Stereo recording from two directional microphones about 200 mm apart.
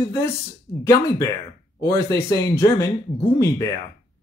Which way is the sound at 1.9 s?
15° left (ahead or behind).